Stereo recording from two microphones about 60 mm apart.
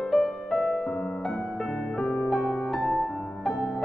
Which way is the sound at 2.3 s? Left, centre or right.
Centre.